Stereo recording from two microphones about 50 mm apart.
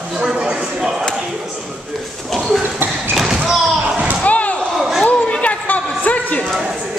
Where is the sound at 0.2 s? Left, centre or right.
Centre.